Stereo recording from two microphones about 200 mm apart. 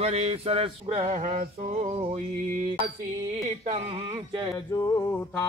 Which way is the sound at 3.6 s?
35° right (ahead or behind).